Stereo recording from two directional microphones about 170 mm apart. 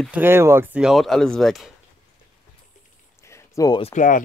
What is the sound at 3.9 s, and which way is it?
Speech, 50° left (ahead or behind).